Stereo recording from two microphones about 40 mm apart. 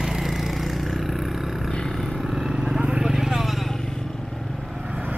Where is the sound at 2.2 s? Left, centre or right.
Centre.